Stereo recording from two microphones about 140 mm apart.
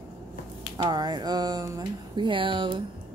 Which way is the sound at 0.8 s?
30° right (ahead or behind).